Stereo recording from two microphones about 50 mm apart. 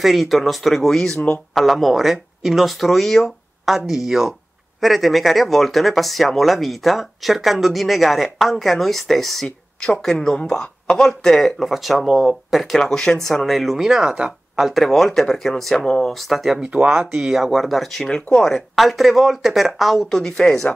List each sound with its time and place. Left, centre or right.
0.0 s speech: centre
12.7 s speech: centre
18.0 s speech: centre
18.4 s speech: centre